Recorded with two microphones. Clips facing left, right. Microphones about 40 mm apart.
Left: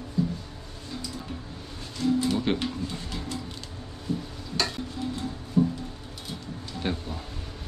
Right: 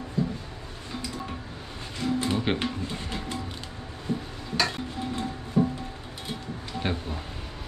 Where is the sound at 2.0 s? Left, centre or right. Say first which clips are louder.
Left 2 dB; right.